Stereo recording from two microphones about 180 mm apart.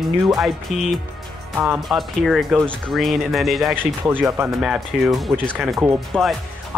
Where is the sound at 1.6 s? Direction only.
Centre (ahead or behind).